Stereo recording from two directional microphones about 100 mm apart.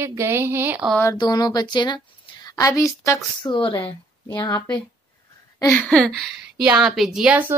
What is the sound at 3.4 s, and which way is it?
Speech, 50° left (ahead or behind).